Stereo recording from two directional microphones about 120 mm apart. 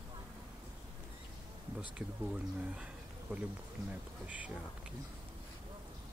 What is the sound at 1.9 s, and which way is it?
Speech, 10° right (ahead or behind).